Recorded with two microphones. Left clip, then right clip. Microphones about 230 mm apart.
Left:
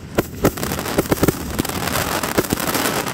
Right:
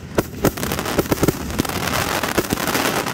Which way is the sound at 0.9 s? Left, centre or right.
Centre.